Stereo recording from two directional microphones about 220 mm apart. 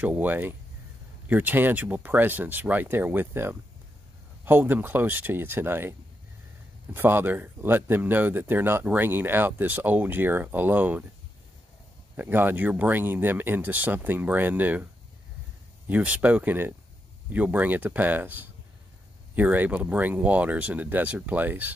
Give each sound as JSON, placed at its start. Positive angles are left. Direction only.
{"t": 0.0, "sound": "speech", "side_deg": -5}
{"t": 12.2, "sound": "speech", "side_deg": -10}
{"t": 15.9, "sound": "speech", "side_deg": -5}